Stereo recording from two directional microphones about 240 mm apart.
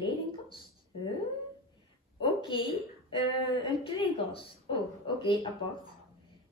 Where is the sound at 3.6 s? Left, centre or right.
Left.